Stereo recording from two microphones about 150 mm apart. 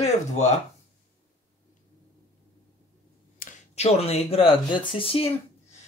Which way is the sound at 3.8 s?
45° left (ahead or behind).